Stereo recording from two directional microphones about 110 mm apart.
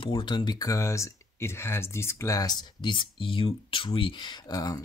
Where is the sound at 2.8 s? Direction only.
50° left (ahead or behind).